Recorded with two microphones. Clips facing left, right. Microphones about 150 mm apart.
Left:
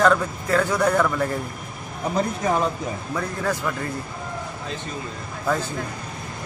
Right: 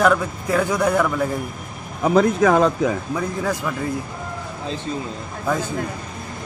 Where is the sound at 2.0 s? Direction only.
90° right.